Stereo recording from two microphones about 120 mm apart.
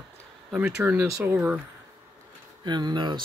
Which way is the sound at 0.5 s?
10° right (ahead or behind).